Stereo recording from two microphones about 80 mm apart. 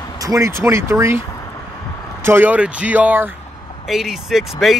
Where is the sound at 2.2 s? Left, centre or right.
Right.